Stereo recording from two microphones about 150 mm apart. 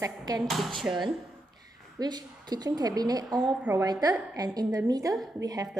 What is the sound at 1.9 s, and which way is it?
A woman's voice, 30° right (ahead or behind).